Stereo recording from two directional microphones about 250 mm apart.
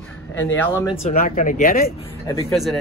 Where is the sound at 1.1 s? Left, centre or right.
Left.